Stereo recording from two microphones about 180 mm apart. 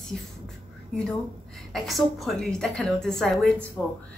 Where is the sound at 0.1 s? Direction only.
5° left (ahead or behind).